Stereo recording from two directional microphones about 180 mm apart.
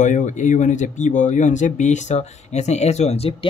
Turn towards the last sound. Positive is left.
turn(degrees=35)  # may be behind; listen again after turning